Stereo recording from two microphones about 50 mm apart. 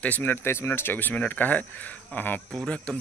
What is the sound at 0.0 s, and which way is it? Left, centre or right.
Speech, left.